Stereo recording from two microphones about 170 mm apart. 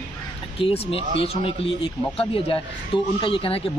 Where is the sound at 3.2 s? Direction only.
30° left (ahead or behind).